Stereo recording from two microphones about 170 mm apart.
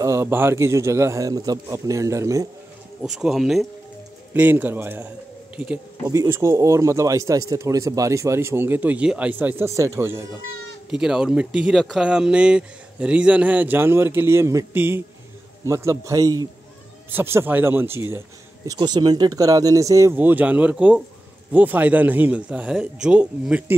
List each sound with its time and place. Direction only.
0.0 s speech: 15° right (ahead or behind)
3.0 s speech: 5° right (ahead or behind)
18.7 s speech: 25° right (ahead or behind); by 23.6 s 5° right (ahead or behind)